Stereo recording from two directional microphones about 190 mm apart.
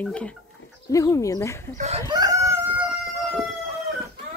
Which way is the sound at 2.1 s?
20° right (ahead or behind).